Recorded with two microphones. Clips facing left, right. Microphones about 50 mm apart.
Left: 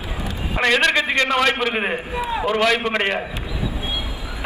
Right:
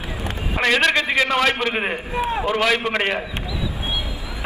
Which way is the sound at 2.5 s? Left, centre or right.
Centre.